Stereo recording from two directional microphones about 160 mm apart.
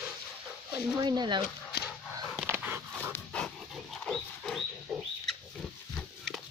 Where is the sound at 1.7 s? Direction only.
90° left.